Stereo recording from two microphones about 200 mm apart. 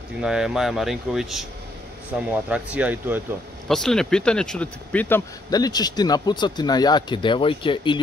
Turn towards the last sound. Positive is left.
turn(degrees=25)  # may be behind; listen again after turning